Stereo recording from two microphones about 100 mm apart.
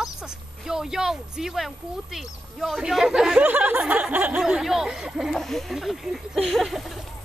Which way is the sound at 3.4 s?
15° right (ahead or behind).